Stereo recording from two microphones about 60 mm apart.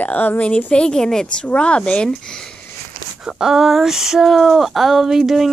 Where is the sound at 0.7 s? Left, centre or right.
Centre.